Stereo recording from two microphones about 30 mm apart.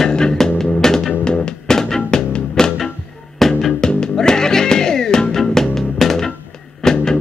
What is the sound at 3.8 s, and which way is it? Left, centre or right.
Music, left.